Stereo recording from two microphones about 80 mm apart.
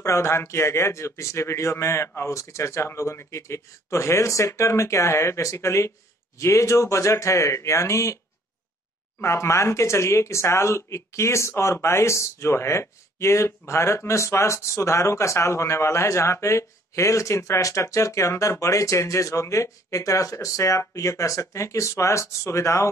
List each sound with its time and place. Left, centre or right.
0.0 s speech: left
9.2 s speech: left